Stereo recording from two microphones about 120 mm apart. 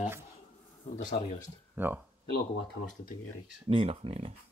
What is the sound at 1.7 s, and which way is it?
Speech, 15° right (ahead or behind).